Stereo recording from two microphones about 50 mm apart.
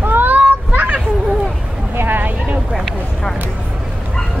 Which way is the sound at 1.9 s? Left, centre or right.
Right.